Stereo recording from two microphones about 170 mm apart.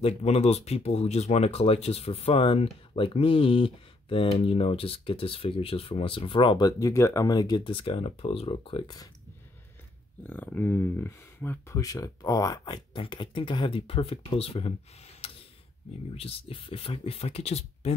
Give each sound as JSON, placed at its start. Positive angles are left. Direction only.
{"t": 0.0, "sound": "speech", "side_deg": 35}
{"t": 10.2, "sound": "speech", "side_deg": 10}
{"t": 16.2, "sound": "speech", "side_deg": 35}